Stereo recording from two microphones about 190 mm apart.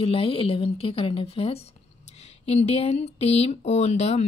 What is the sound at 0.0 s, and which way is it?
Speech, 30° left (ahead or behind).